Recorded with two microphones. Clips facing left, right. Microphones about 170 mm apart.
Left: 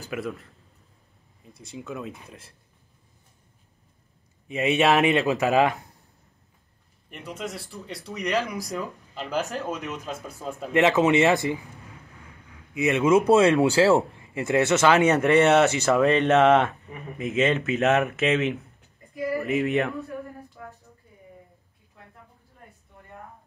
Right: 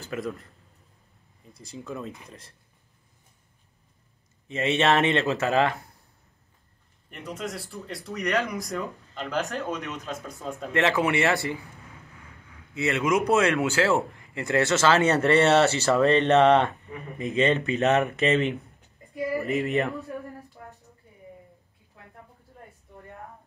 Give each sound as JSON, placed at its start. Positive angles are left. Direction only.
{"t": 0.1, "sound": "speech", "side_deg": 0}
{"t": 1.5, "sound": "speech", "side_deg": 0}
{"t": 4.5, "sound": "speech", "side_deg": 15}
{"t": 7.1, "sound": "speech", "side_deg": 0}
{"t": 10.7, "sound": "speech", "side_deg": 20}
{"t": 12.7, "sound": "speech", "side_deg": 20}
{"t": 13.8, "sound": "speech", "side_deg": 20}
{"t": 15.8, "sound": "speech", "side_deg": 0}